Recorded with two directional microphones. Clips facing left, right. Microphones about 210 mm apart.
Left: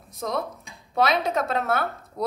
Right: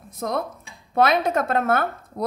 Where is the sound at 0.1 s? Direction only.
55° right (ahead or behind).